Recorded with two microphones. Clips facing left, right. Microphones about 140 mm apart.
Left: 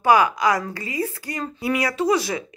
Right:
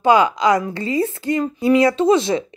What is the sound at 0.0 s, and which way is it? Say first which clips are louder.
A woman's voice: right 3 dB; 20° right (ahead or behind).